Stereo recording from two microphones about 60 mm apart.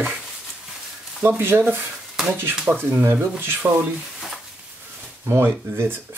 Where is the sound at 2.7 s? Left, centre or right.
Right.